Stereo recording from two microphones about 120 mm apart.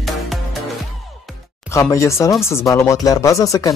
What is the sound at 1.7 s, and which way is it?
Speech, 25° left (ahead or behind).